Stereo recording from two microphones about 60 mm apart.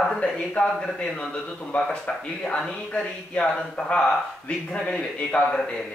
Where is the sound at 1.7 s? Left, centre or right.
Centre.